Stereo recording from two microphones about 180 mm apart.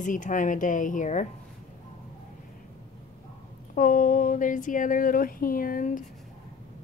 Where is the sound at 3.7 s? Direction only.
50° left (ahead or behind).